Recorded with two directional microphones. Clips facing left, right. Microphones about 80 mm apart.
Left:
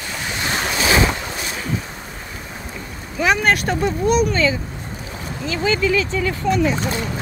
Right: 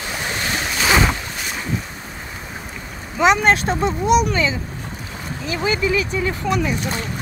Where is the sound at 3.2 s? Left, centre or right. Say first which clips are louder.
Right 2 dB; right.